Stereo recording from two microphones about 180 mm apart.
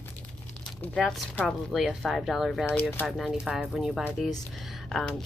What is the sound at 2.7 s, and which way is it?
Speech, 10° left (ahead or behind).